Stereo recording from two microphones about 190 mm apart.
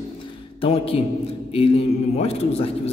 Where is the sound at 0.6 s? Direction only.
30° left (ahead or behind).